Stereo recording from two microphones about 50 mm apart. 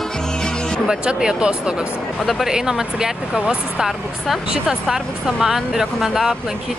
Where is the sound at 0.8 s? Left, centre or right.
Centre.